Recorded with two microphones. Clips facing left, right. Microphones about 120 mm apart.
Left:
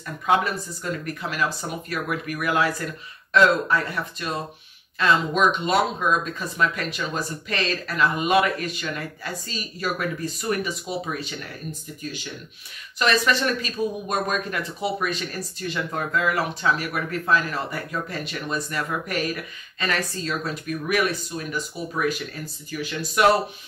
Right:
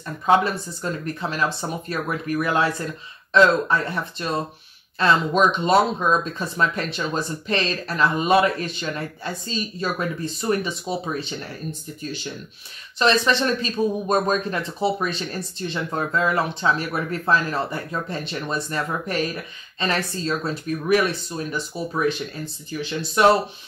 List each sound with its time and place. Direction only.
0.0 s speech: 30° right (ahead or behind)
13.0 s speech: 25° right (ahead or behind)